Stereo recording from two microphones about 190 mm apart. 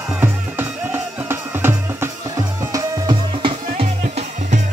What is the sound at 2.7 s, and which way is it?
Music, 25° right (ahead or behind).